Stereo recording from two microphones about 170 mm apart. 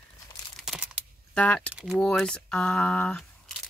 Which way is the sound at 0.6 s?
5° right (ahead or behind).